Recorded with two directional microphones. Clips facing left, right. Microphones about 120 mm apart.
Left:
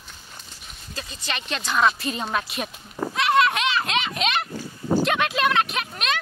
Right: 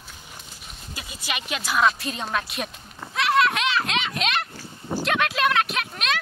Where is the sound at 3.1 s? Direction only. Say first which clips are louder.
Left 1 dB; centre (ahead or behind).